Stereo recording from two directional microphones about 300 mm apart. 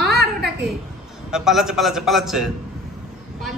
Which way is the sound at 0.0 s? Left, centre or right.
Right.